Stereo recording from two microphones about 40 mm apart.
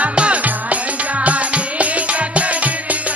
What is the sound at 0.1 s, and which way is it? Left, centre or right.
Music, right.